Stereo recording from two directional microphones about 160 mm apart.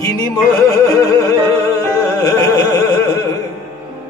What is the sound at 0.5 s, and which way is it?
Music, 20° left (ahead or behind).